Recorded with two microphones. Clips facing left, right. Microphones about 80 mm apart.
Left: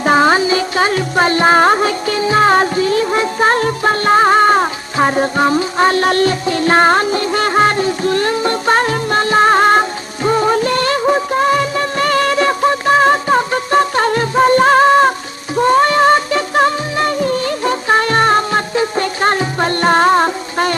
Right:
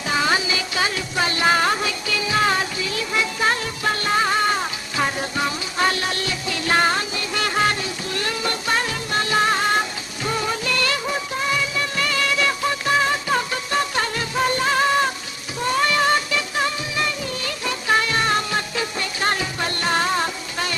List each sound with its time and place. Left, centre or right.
0.0 s music: left